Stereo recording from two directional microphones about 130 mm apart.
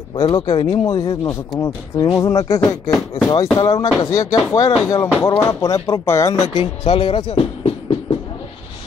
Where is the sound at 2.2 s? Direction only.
25° left (ahead or behind).